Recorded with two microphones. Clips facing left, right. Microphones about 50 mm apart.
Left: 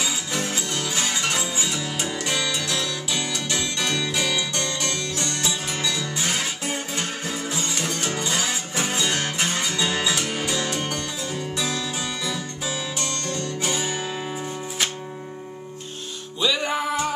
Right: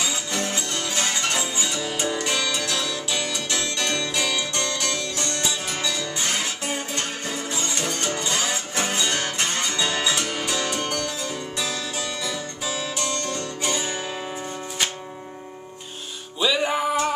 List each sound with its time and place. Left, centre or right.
0.0 s music: centre
11.3 s music: centre
13.0 s music: centre
13.7 s music: centre
16.3 s music: centre